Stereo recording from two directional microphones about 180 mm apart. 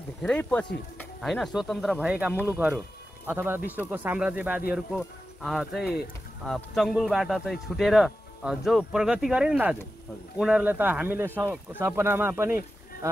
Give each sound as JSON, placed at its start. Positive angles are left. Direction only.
{"t": 0.2, "sound": "speech", "side_deg": 5}